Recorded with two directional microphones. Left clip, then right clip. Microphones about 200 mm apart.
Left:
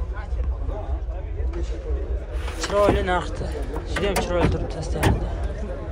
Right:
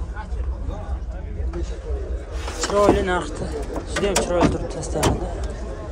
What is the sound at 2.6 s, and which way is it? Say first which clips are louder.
Speech: right 2 dB; 20° right (ahead or behind).